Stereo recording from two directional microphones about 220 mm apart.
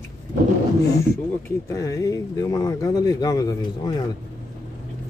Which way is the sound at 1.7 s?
15° left (ahead or behind).